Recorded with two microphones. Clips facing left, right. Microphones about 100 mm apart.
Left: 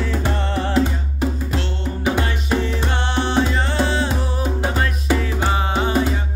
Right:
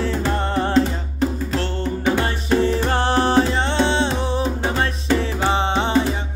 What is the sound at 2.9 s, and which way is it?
Music, 40° right (ahead or behind).